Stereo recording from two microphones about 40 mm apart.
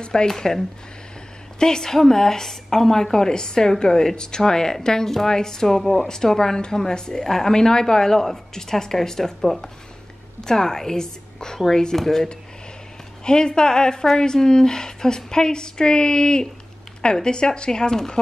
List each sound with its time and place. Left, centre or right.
0.0 s speech: left
0.3 s a woman's voice: centre
13.2 s a woman's voice: centre